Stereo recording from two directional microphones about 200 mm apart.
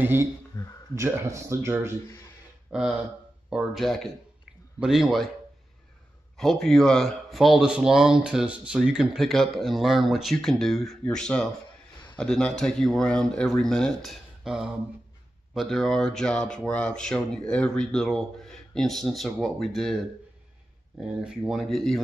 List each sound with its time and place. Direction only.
0.0 s speech: 10° right (ahead or behind)
0.5 s speech: 15° left (ahead or behind)
0.9 s a man's voice: 15° right (ahead or behind)
6.3 s a man's voice: centre (ahead or behind)
21.2 s a man's voice: 5° right (ahead or behind)